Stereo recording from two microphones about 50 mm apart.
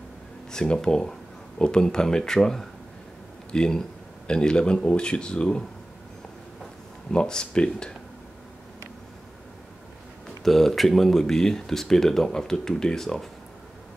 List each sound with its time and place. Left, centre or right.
0.5 s speech: centre
7.1 s speech: centre
10.4 s speech: centre